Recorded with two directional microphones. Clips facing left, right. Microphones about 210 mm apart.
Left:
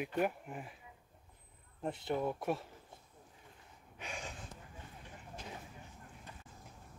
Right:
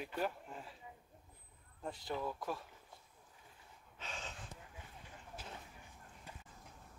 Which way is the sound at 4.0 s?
15° left (ahead or behind).